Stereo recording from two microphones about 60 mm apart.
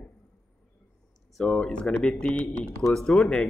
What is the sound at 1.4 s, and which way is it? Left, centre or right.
Speech, centre.